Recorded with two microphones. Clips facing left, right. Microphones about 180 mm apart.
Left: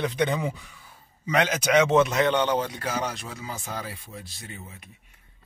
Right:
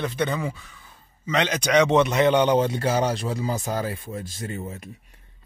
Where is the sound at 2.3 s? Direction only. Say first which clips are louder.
Right 5 dB; 20° right (ahead or behind); by 4.8 s 45° right (ahead or behind).